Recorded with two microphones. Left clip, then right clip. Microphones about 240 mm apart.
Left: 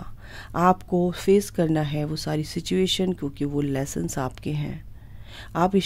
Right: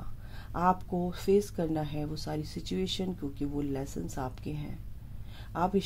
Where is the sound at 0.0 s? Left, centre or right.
Left.